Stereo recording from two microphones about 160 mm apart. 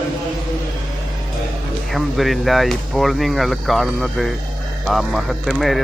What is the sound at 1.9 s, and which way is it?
A man's voice, centre (ahead or behind).